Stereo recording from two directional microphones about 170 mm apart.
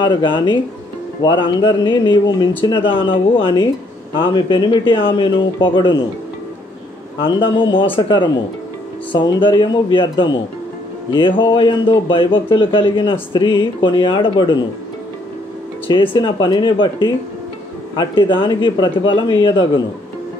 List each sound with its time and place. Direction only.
0.0 s a man's voice: 30° left (ahead or behind)
4.2 s a man's voice: 30° left (ahead or behind)
7.2 s a man's voice: 30° left (ahead or behind)
15.9 s a man's voice: 30° left (ahead or behind)